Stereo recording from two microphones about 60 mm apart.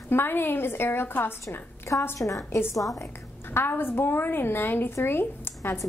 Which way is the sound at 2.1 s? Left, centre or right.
Left.